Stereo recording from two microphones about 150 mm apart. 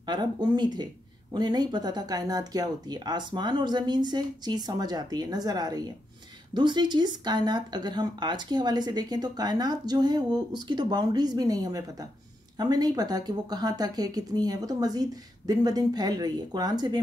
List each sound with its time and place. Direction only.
0.0 s speech: 30° right (ahead or behind)